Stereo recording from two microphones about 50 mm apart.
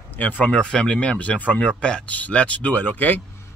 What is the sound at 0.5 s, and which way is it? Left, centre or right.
Speech, centre.